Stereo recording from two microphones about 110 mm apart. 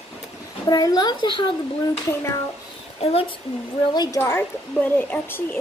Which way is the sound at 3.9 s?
40° left (ahead or behind).